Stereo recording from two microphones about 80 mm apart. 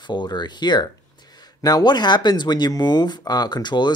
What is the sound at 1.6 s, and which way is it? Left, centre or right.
Speech, left.